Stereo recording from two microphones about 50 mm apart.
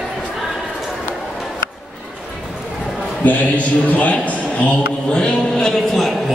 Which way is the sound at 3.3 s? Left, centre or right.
Left.